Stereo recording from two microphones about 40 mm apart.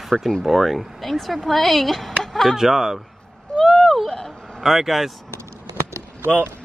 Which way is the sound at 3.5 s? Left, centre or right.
Left.